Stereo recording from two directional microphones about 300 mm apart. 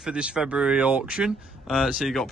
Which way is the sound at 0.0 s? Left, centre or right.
Centre.